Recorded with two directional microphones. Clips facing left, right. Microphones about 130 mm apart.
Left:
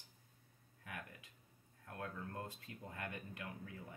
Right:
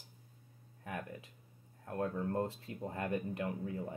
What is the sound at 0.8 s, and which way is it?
Speech, 30° right (ahead or behind).